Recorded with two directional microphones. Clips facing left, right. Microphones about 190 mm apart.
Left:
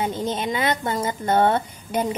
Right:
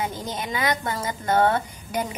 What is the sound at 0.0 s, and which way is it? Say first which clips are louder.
A woman's voice: left 5 dB; 25° left (ahead or behind).